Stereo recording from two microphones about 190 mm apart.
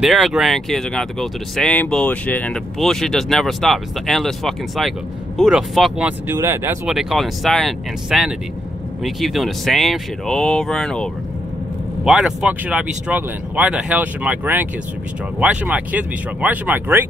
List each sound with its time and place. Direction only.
0.0 s speech: centre (ahead or behind)
6.9 s speech: centre (ahead or behind)